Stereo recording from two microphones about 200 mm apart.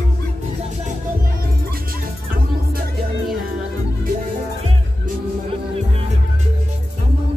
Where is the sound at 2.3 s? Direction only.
45° right (ahead or behind).